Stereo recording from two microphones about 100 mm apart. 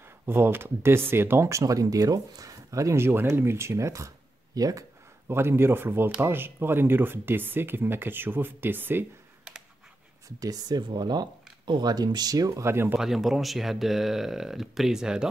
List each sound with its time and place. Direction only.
0.3 s speech: 20° right (ahead or behind); by 4.8 s 35° right (ahead or behind)
5.3 s speech: 25° right (ahead or behind)
10.2 s speech: 40° right (ahead or behind); by 13.0 s 25° right (ahead or behind)
13.0 s speech: centre (ahead or behind)